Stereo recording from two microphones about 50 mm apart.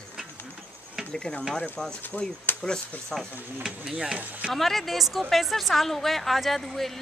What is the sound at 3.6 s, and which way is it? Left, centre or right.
Speech, centre.